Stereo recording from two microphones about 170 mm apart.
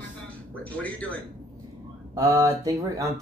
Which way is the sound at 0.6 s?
10° left (ahead or behind).